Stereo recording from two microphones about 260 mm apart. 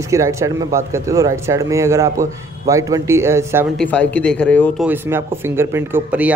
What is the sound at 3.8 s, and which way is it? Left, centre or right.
A man's voice, centre.